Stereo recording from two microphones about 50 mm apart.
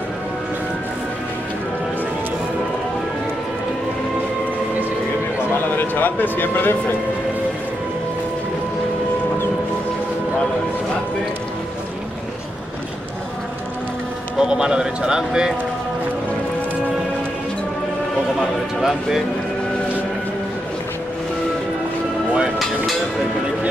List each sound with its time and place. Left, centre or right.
5.8 s speech: left
14.4 s speech: centre
18.8 s speech: centre